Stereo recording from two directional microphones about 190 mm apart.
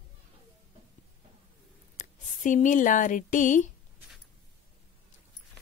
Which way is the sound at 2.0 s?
40° left (ahead or behind).